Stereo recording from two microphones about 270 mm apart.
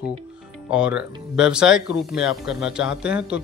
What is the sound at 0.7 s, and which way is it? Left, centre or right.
Speech, centre.